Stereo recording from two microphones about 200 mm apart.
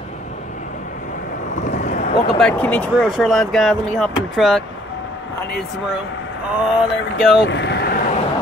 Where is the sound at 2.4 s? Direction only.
5° left (ahead or behind).